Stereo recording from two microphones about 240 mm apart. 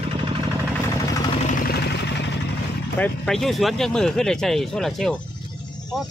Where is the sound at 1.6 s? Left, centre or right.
Left.